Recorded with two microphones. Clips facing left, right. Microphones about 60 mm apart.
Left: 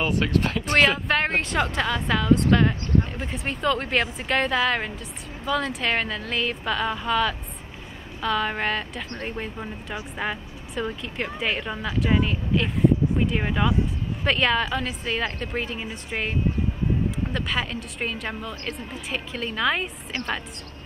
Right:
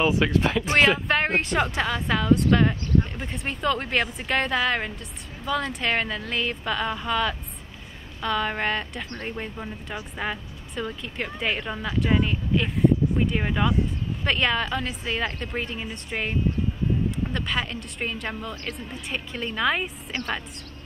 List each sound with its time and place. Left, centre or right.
0.0 s speech: right
0.7 s a woman's voice: centre